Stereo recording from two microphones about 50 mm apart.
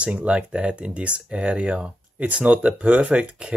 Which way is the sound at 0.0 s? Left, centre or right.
Right.